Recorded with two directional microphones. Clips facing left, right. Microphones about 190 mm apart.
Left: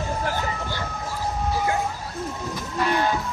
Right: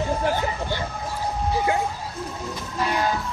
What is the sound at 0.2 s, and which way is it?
Vehicle, 20° right (ahead or behind).